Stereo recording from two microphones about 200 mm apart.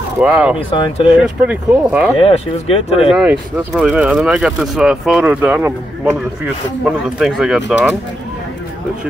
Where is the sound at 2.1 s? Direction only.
30° left (ahead or behind).